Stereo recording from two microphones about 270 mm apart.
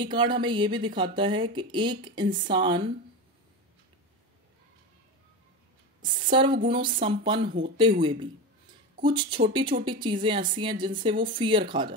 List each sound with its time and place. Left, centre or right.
0.0 s speech: centre
6.3 s speech: centre